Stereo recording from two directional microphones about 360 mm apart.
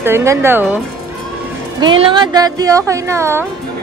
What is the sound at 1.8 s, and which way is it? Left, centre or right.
Speech, centre.